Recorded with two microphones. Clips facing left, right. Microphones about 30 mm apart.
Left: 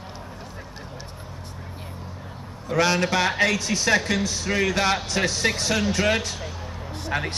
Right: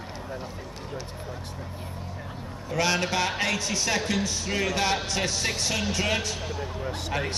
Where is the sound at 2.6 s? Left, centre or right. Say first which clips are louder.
Left 4 dB; left.